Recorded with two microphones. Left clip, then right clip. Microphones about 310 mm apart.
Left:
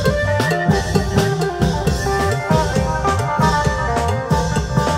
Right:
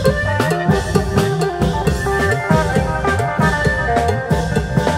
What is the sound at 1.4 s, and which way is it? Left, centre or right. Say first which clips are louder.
Music: right 2 dB; centre.